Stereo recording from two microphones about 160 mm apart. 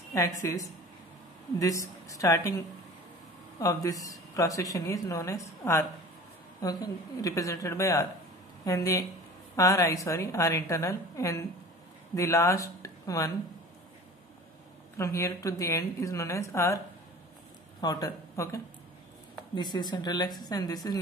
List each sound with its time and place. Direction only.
0.1 s a woman's voice: 20° left (ahead or behind)
15.0 s a woman's voice: 20° left (ahead or behind)